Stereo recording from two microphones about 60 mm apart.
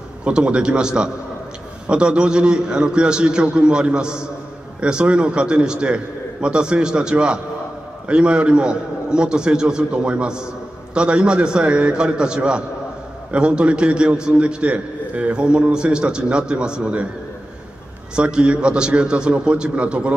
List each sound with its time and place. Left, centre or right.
0.2 s a man's voice: centre
18.1 s a man's voice: centre